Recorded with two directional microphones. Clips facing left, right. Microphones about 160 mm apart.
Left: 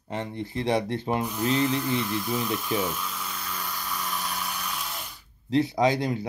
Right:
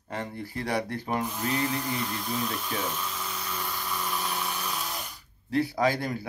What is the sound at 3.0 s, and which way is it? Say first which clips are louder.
Dental drill: even; 10° right (ahead or behind).